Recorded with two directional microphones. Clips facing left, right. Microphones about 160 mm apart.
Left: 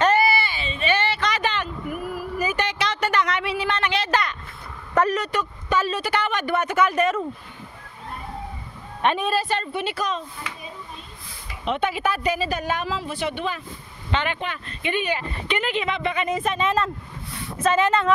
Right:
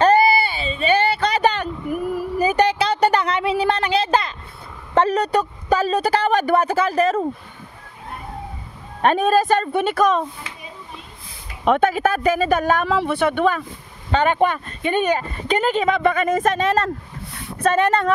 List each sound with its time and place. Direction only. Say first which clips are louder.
0.0 s a sound: right 5 dB; 35° right (ahead or behind)
4.9 s speech: right 4 dB; 30° right (ahead or behind)
9.0 s speech: right 6 dB; 45° right (ahead or behind)
11.6 s speech: right 7 dB; 50° right (ahead or behind)
17.6 s speech: right 2 dB; 60° right (ahead or behind)